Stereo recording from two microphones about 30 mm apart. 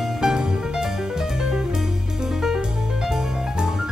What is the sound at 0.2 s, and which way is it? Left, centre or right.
Music, centre.